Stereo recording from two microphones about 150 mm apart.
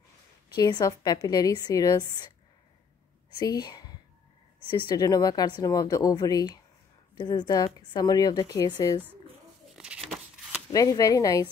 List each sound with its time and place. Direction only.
0.6 s a woman's voice: 25° left (ahead or behind)
3.3 s a woman's voice: 25° left (ahead or behind)
9.8 s a sound: 5° right (ahead or behind)
10.7 s a woman's voice: 25° left (ahead or behind)